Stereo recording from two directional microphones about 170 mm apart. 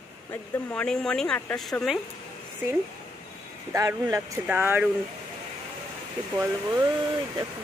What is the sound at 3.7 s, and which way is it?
Speech, 20° right (ahead or behind).